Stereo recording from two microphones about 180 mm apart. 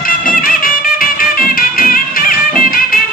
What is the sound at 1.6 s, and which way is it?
Music, 50° left (ahead or behind).